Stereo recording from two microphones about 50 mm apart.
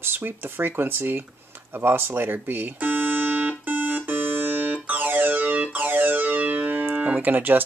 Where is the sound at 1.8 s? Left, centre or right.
Right.